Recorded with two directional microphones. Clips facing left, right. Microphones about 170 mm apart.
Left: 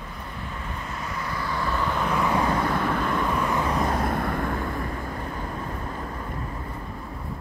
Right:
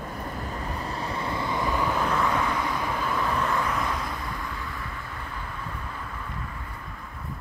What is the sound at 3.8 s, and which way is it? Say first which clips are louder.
Vehicle: left 6 dB; 50° left (ahead or behind).